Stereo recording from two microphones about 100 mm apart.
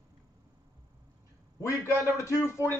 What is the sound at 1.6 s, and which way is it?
A man's voice, 30° left (ahead or behind).